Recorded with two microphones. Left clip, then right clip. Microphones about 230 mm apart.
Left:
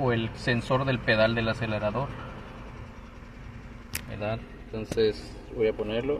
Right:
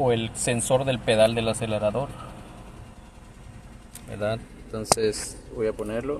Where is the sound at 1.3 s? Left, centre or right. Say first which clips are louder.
Right 3 dB; centre.